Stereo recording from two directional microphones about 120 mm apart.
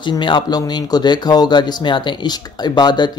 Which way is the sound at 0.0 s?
40° left (ahead or behind).